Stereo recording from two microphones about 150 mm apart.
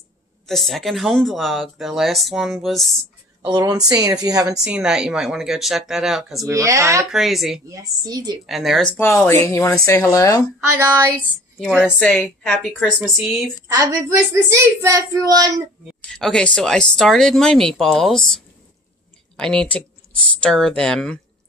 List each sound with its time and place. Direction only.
0.5 s speech: centre (ahead or behind)
3.4 s a woman's voice: 25° right (ahead or behind)
4.6 s speech: 5° right (ahead or behind)
6.4 s a woman's voice: 20° right (ahead or behind)
7.1 s speech: centre (ahead or behind)
7.6 s a woman's voice: 25° right (ahead or behind)
8.5 s speech: centre (ahead or behind)
8.9 s speech: 15° left (ahead or behind)
10.8 s a woman's voice: 20° right (ahead or behind)
12.0 s speech: 5° left (ahead or behind)
13.7 s a woman's voice: 20° right (ahead or behind)
16.0 s speech: 5° left (ahead or behind)